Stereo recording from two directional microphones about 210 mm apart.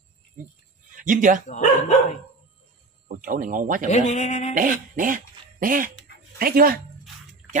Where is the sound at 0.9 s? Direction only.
40° right (ahead or behind).